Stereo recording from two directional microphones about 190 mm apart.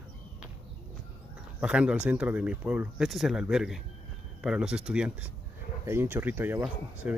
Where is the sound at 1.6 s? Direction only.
5° right (ahead or behind).